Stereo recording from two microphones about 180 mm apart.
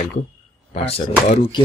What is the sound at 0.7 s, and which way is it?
Speech, 35° left (ahead or behind).